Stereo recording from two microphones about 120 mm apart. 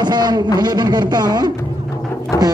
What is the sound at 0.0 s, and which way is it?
A man's voice, 35° right (ahead or behind).